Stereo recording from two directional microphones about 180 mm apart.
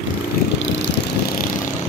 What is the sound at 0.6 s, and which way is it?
Vehicle, 90° left.